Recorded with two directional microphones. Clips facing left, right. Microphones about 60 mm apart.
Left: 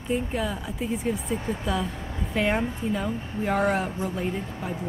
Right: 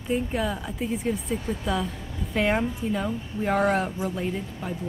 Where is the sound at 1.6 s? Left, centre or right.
Centre.